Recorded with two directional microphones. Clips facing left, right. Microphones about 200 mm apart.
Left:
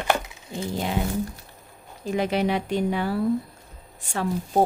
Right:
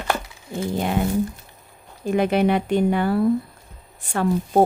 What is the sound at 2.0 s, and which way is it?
Speech, 55° right (ahead or behind).